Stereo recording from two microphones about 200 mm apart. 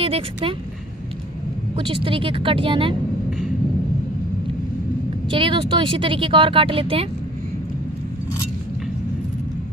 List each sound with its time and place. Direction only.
0.0 s speech: 25° right (ahead or behind)
1.8 s speech: 25° right (ahead or behind)
5.3 s speech: 25° right (ahead or behind)